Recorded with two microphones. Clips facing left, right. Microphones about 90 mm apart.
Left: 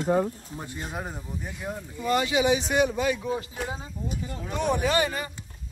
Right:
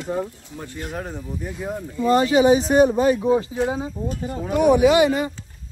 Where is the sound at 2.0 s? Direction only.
35° right (ahead or behind).